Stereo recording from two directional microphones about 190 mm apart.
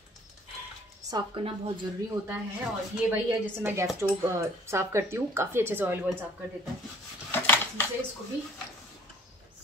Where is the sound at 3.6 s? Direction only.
15° right (ahead or behind).